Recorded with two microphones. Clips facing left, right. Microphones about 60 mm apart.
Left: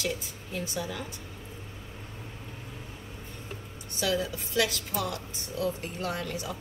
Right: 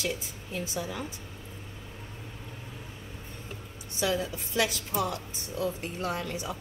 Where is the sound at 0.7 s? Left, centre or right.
Right.